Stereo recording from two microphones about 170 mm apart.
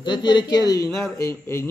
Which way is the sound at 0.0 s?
25° left (ahead or behind).